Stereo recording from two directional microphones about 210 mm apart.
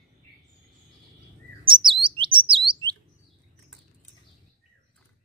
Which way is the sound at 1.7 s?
25° right (ahead or behind).